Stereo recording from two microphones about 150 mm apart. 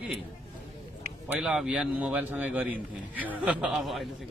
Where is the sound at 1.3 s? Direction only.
5° right (ahead or behind).